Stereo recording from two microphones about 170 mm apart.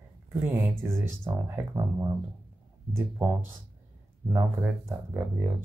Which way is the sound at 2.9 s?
10° right (ahead or behind).